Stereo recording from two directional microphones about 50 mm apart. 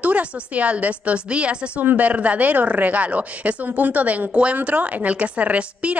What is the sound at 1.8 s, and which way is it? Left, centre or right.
Speech, right.